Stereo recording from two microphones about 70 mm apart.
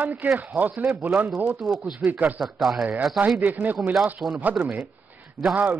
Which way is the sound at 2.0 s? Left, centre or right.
Right.